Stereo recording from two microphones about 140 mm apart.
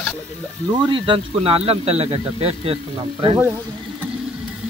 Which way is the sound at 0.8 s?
35° right (ahead or behind).